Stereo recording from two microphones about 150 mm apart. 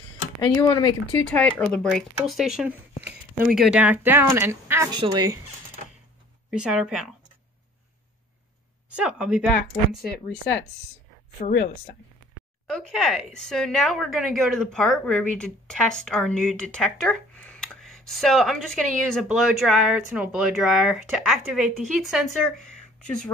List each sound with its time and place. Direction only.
0.4 s speech: 25° left (ahead or behind)
1.1 s a woman's voice: 10° left (ahead or behind)
3.0 s a sound: 15° right (ahead or behind)
3.4 s speech: 5° right (ahead or behind); by 5.4 s 25° right (ahead or behind)
6.6 s a woman's voice: 5° right (ahead or behind)
8.9 s a woman's voice: 5° right (ahead or behind)
11.4 s speech: 60° left (ahead or behind)
12.6 s a woman's voice: 5° left (ahead or behind)